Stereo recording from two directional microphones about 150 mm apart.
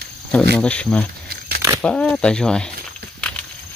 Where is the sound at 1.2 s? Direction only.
90° right.